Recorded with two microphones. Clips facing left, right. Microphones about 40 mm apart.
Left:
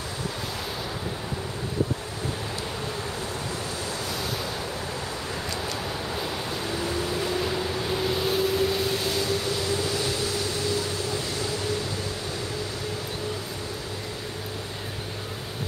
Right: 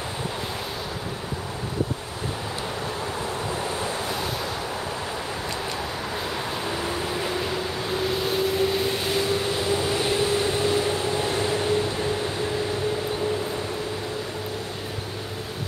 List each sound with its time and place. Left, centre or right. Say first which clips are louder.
6.7 s vehicle: left 1 dB; centre